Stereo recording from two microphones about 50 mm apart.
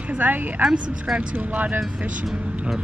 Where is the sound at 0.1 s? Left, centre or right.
Right.